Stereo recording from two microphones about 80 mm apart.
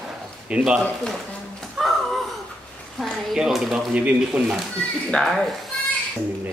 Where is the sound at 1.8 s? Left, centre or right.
Centre.